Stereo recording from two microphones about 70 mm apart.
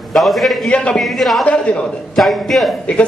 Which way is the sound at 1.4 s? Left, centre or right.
Centre.